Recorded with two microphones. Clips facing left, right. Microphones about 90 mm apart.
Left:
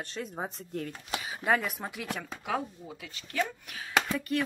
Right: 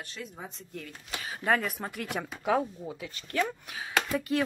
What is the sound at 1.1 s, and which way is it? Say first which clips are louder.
Speech: even; 10° left (ahead or behind).